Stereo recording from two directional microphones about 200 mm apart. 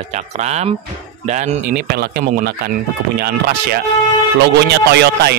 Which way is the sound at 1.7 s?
50° right (ahead or behind).